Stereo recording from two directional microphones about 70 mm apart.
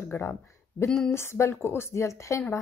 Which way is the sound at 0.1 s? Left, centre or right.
Left.